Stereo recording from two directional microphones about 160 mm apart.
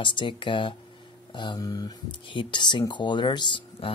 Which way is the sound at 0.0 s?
30° left (ahead or behind).